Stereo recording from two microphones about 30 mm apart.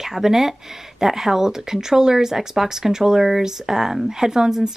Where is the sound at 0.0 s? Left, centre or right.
Centre.